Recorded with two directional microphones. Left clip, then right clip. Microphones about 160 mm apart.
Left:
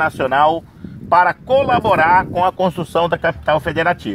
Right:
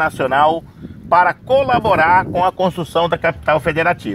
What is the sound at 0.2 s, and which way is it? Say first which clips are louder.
Speech: even; 35° right (ahead or behind).